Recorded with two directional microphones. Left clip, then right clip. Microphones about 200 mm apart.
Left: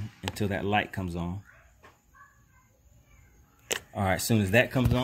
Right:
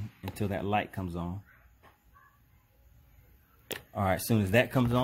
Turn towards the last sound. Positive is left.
turn(degrees=-15)  # may be behind; listen again after turning